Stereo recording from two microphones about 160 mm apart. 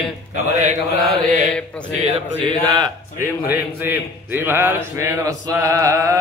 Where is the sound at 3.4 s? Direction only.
10° right (ahead or behind).